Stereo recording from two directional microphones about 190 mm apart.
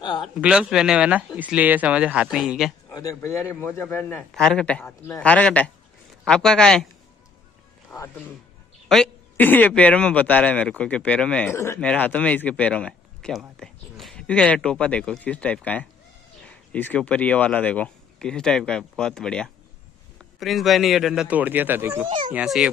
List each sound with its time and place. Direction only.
0.0 s speech: 25° left (ahead or behind)
0.4 s speech: 5° right (ahead or behind)
2.9 s a man's voice: 20° left (ahead or behind)
4.2 s a man's voice: centre (ahead or behind)
8.8 s a man's voice: centre (ahead or behind)